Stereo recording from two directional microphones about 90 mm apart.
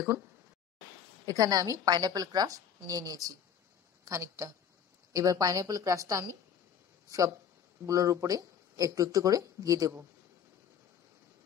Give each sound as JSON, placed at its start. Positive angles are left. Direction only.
{"t": 1.2, "sound": "a woman's voice", "side_deg": -40}